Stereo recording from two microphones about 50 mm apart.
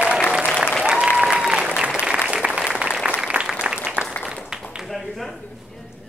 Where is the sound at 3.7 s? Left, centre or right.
Right.